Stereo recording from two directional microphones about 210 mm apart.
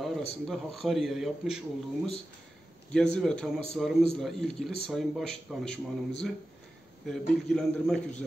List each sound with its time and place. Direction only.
0.0 s a man's voice: centre (ahead or behind)
2.9 s a man's voice: 5° left (ahead or behind)